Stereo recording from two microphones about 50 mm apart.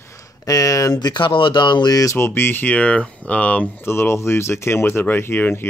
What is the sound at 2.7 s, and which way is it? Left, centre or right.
Speech, left.